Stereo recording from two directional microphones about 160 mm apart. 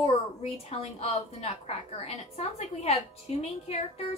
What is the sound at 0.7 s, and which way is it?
A woman's voice, 40° left (ahead or behind).